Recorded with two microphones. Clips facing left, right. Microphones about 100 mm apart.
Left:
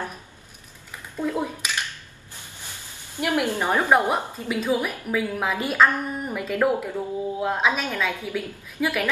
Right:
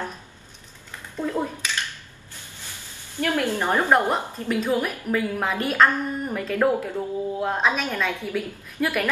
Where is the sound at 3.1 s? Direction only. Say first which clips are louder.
Even; 15° left (ahead or behind).